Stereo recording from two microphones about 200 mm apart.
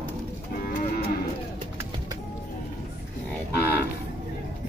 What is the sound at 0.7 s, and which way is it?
Moo, 40° left (ahead or behind).